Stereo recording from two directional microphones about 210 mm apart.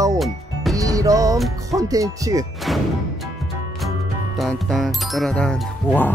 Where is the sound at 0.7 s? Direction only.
15° right (ahead or behind).